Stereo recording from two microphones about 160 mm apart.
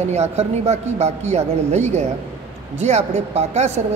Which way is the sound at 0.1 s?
45° right (ahead or behind).